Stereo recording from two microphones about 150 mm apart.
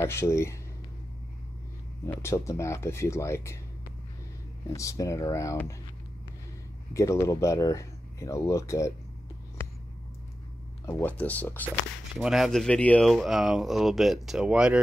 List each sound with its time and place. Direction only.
0.0 s speech: 15° left (ahead or behind)
2.0 s speech: 20° left (ahead or behind)
4.6 s speech: 20° left (ahead or behind)
6.9 s speech: 20° left (ahead or behind)
10.9 s speech: 10° left (ahead or behind)
12.2 s speech: centre (ahead or behind)